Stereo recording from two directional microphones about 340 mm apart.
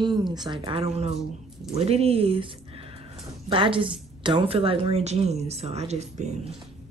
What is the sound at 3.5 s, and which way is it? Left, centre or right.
A woman's voice, centre.